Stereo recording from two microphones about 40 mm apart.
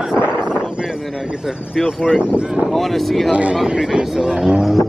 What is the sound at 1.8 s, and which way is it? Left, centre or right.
Speech, centre.